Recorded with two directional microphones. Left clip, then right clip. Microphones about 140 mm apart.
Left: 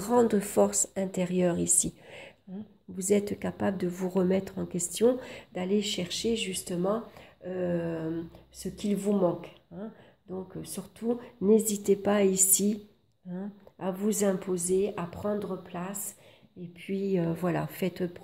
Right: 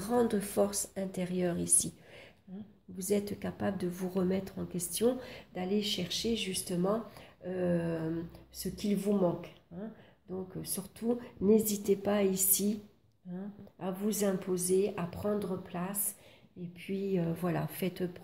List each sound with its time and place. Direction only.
0.0 s speech: 40° left (ahead or behind); by 6.9 s 15° left (ahead or behind)
6.9 s speech: centre (ahead or behind)
8.5 s a woman's voice: 15° left (ahead or behind)
16.7 s a woman's voice: 20° left (ahead or behind)